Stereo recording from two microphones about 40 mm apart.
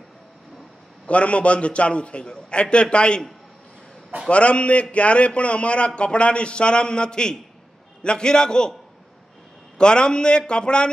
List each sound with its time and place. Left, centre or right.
1.0 s speech: left
4.3 s a man's voice: left
9.8 s speech: left